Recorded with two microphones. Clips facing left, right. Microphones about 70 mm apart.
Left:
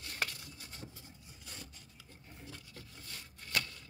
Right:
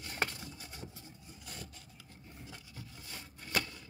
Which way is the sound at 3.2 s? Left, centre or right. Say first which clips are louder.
Right 2 dB; right.